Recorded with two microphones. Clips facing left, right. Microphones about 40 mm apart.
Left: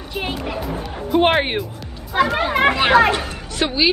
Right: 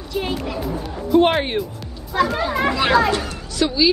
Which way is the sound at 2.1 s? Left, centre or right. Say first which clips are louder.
Left 1 dB; left.